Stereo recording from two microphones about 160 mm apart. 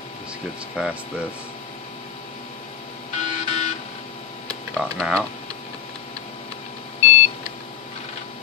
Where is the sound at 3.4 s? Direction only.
45° left (ahead or behind).